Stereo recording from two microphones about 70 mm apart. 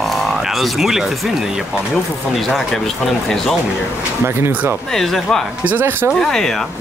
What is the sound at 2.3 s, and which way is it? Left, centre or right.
Speech, centre.